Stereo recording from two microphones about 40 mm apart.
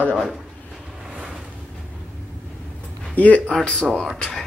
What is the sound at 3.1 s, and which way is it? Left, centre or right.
Speech, left.